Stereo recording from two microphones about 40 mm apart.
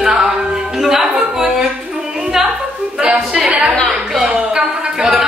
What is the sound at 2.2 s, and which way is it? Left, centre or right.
Music, centre.